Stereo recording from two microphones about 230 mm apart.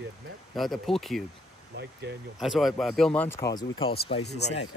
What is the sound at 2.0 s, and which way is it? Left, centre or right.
Speech, right.